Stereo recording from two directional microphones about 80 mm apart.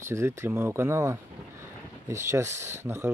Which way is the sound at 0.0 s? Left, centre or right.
Right.